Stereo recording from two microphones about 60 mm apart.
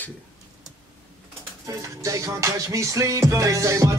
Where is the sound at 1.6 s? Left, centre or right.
Right.